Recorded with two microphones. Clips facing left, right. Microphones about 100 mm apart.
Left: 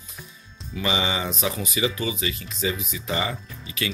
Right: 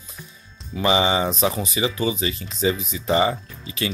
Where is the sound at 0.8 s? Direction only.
30° right (ahead or behind).